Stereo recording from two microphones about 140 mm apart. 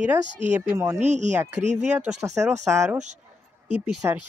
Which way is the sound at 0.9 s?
55° right (ahead or behind).